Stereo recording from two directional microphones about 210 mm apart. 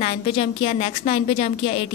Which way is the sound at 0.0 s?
30° left (ahead or behind).